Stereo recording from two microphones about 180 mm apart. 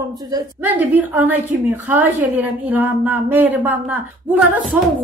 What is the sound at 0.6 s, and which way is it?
A woman's voice, 10° right (ahead or behind).